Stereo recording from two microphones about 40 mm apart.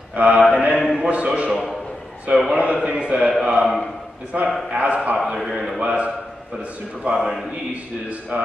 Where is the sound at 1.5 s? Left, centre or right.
Centre.